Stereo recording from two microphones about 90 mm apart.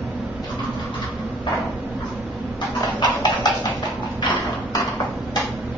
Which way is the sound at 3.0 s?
50° left (ahead or behind).